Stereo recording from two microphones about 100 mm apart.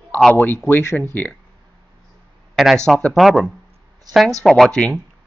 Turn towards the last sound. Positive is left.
turn(degrees=5)  # may be behind; listen again after turning